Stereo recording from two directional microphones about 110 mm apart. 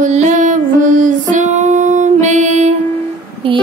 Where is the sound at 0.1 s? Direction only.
90° right.